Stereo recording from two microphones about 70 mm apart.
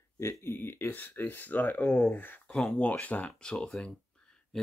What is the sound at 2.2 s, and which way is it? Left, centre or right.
Speech, left.